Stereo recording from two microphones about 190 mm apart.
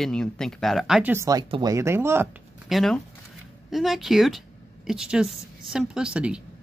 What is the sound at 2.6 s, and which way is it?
Speech, centre (ahead or behind).